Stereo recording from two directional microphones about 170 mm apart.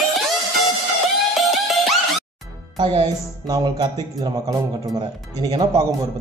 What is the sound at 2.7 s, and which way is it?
Speech, 25° right (ahead or behind).